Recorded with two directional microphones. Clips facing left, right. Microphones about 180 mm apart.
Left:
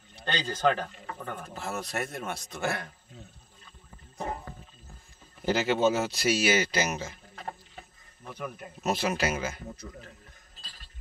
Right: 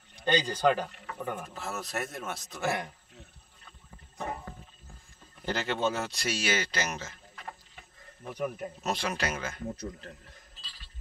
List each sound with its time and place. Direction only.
0.1 s a man's voice: 10° right (ahead or behind)
1.5 s a man's voice: centre (ahead or behind)
5.4 s speech: 5° left (ahead or behind)
7.3 s a sound: 35° left (ahead or behind)
8.3 s speech: 15° right (ahead or behind)
8.8 s a man's voice: 5° left (ahead or behind)
10.6 s a sound: 45° left (ahead or behind)